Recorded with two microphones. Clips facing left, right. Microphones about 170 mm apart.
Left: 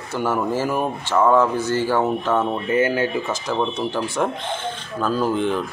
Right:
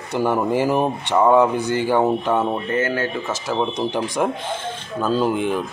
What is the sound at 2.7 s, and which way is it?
Speech, 15° left (ahead or behind).